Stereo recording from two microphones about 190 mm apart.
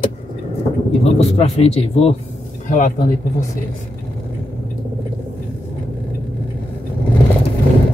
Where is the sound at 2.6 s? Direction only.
45° left (ahead or behind).